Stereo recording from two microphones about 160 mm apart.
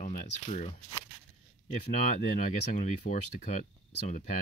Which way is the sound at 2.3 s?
50° left (ahead or behind).